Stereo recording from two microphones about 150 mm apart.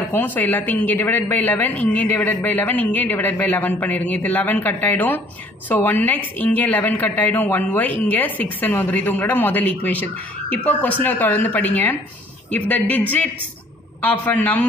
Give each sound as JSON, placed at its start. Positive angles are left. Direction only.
{"t": 0.1, "sound": "a woman's voice", "side_deg": 10}